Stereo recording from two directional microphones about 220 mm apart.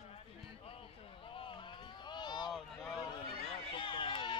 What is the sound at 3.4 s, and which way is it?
Run, 20° left (ahead or behind).